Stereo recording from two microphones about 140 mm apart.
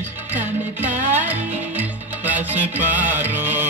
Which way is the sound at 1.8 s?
10° right (ahead or behind).